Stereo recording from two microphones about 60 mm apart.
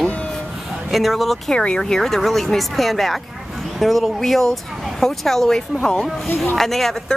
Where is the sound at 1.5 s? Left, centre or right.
Centre.